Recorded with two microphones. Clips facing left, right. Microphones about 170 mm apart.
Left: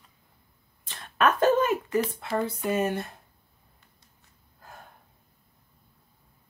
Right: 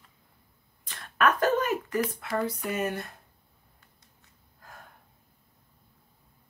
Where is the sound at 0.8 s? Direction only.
25° left (ahead or behind).